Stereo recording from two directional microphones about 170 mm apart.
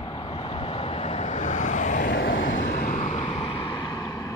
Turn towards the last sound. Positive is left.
turn(degrees=20)  # may be behind; listen again after turning